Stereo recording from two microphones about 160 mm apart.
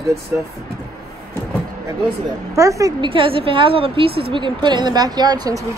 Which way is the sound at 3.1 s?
35° right (ahead or behind).